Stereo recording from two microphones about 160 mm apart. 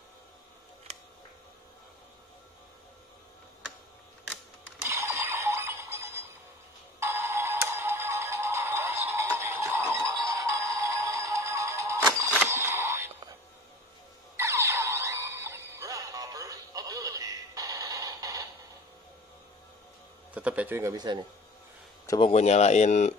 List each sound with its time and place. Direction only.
4.8 s music: 15° right (ahead or behind)
12.4 s a sound: 15° right (ahead or behind)
14.3 s music: 15° right (ahead or behind)
20.3 s a man's voice: 10° right (ahead or behind)
20.9 s speech: 25° right (ahead or behind)
22.2 s speech: 40° left (ahead or behind)